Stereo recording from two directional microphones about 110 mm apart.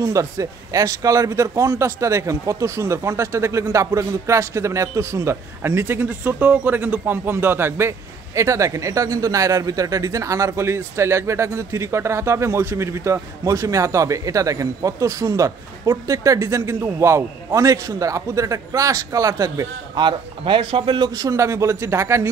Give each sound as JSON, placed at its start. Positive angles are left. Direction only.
{"t": 0.0, "sound": "speech", "side_deg": -30}
{"t": 20.0, "sound": "speech", "side_deg": -50}
{"t": 21.1, "sound": "speech", "side_deg": -30}